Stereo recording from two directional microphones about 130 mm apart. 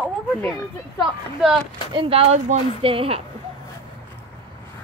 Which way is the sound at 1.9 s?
40° right (ahead or behind).